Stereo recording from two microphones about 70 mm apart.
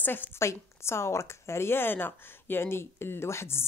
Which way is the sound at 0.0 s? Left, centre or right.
Left.